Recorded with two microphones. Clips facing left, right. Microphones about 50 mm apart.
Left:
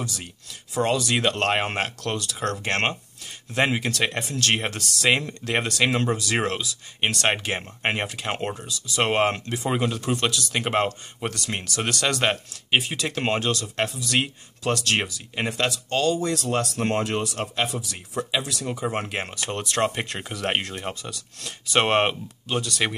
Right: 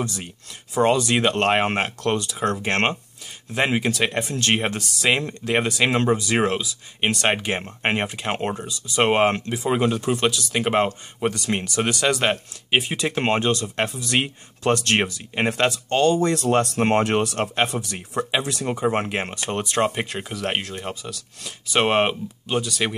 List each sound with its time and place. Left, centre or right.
0.7 s speech: right
9.0 s speech: centre
11.8 s speech: centre
12.8 s speech: centre
14.6 s speech: right
17.0 s speech: right
18.5 s speech: right
19.0 s speech: centre
19.9 s speech: centre